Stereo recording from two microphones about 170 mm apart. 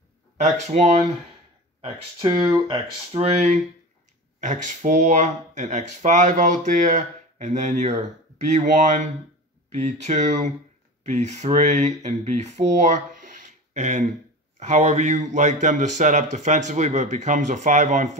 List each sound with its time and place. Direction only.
0.4 s speech: 45° right (ahead or behind)
1.8 s speech: 30° right (ahead or behind)
3.1 s speech: 40° right (ahead or behind)